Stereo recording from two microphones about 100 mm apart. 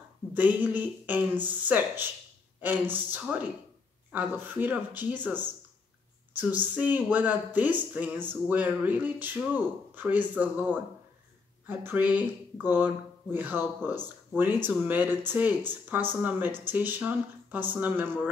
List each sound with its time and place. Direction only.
0.3 s speech: 15° right (ahead or behind)